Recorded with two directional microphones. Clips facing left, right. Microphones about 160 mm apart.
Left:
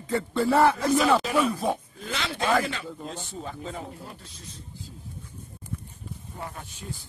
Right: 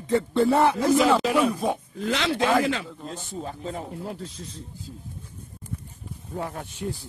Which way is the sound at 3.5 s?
35° right (ahead or behind).